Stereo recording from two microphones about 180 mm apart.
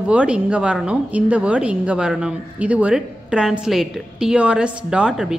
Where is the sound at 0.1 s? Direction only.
5° right (ahead or behind).